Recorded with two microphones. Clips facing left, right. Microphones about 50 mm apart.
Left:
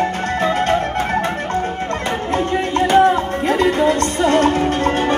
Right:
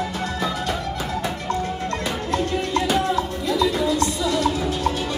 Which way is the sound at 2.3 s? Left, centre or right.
Left.